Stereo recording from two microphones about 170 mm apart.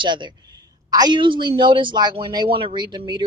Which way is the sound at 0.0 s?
30° right (ahead or behind).